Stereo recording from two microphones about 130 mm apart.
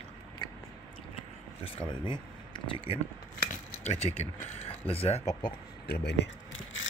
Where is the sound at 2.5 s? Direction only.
45° left (ahead or behind).